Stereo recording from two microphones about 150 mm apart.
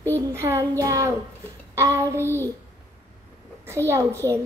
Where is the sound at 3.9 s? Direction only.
20° right (ahead or behind).